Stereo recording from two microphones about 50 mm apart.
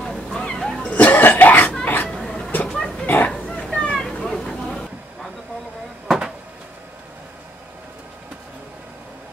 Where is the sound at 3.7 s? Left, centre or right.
Centre.